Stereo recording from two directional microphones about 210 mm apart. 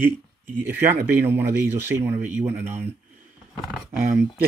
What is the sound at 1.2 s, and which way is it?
Speech, 10° right (ahead or behind).